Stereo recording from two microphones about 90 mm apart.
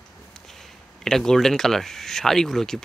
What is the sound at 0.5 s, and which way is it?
Speech, 5° left (ahead or behind).